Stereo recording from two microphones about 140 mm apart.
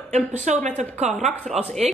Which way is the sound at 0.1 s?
50° right (ahead or behind).